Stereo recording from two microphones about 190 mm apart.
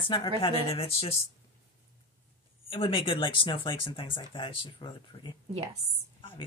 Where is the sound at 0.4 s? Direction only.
30° left (ahead or behind).